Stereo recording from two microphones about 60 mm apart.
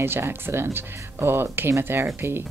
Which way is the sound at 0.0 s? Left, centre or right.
Right.